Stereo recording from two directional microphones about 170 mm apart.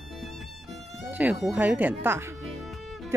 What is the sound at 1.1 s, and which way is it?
Speech, 10° right (ahead or behind).